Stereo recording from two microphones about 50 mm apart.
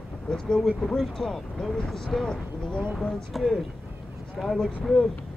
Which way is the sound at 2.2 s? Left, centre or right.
Centre.